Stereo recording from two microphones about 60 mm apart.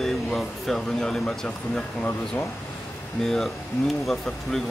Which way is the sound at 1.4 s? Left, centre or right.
Left.